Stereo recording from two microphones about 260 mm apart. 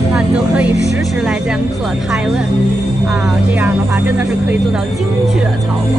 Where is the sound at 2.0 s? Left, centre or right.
Centre.